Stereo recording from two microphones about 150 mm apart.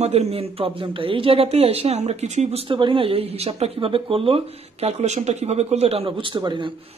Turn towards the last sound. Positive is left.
turn(degrees=-30)  # may be behind; listen again after turning